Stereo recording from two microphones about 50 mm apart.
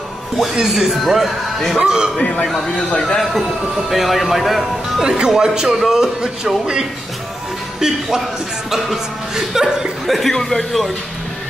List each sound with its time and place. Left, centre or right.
0.6 s speech: centre
1.8 s speech: centre
2.4 s speech: centre
5.0 s speech: centre
8.6 s speech: centre